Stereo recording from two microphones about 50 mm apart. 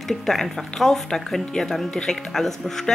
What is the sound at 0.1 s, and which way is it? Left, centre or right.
Speech, centre.